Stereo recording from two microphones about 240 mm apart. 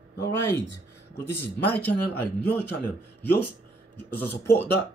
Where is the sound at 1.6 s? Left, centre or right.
Centre.